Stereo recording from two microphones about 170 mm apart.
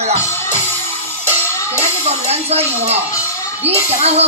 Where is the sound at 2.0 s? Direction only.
40° right (ahead or behind).